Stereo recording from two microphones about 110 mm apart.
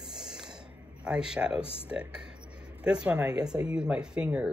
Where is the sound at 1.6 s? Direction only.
60° left (ahead or behind).